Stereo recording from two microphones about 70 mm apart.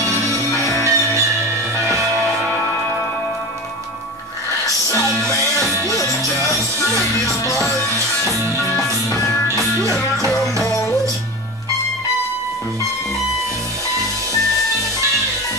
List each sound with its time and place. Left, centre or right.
0.5 s music: left
0.8 s music: right
5.9 s music: left
7.8 s music: right